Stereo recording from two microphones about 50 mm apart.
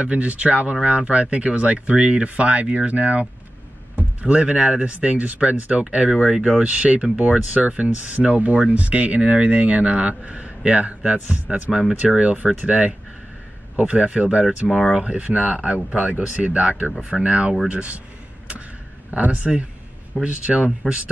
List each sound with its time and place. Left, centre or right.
0.0 s speech: right
6.1 s speech: centre
6.6 s speech: right
14.6 s speech: centre
15.0 s speech: right
19.0 s speech: right